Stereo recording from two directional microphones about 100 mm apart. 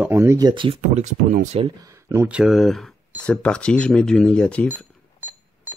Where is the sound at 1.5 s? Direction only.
90° right.